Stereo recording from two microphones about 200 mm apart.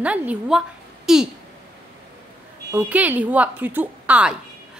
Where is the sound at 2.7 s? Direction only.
10° right (ahead or behind).